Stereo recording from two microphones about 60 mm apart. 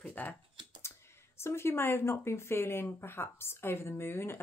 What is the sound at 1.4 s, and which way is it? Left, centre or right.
Speech, left.